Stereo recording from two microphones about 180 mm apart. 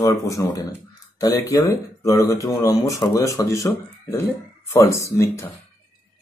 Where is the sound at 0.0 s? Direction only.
15° left (ahead or behind).